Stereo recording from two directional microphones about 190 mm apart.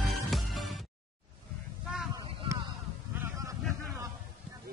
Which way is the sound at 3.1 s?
15° right (ahead or behind).